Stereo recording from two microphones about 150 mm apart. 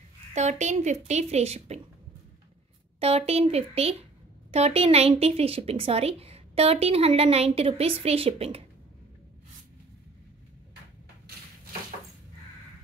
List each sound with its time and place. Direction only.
0.3 s speech: 50° right (ahead or behind)
3.0 s a woman's voice: 40° right (ahead or behind)